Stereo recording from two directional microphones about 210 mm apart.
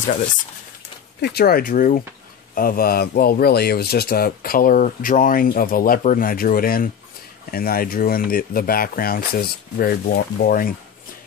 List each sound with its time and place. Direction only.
1.2 s speech: 50° left (ahead or behind)